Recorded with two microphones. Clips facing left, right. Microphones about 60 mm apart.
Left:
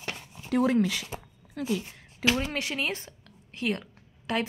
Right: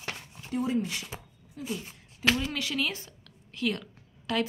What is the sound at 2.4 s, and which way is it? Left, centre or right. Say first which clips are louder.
A woman's voice: even; left.